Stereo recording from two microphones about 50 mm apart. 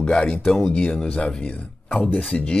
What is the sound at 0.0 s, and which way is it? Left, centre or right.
Speech, centre.